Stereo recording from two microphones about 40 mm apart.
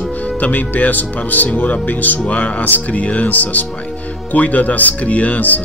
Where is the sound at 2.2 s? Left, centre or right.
Left.